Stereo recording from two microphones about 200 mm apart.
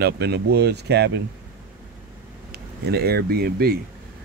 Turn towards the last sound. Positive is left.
turn(degrees=-50)  # may be behind; listen again after turning